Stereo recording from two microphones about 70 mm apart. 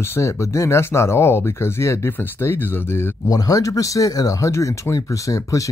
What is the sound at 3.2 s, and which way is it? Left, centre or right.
Speech, left.